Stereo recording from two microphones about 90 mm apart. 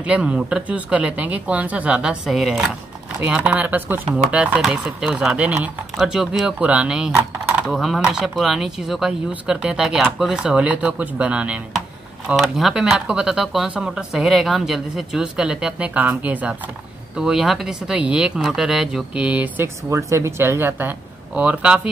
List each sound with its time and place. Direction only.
0.0 s speech: 15° right (ahead or behind)
3.2 s speech: 20° right (ahead or behind)
12.4 s speech: 5° right (ahead or behind)
17.2 s speech: 5° right (ahead or behind); by 19.7 s 20° right (ahead or behind)
19.9 s speech: 35° right (ahead or behind)
21.4 s speech: 15° right (ahead or behind)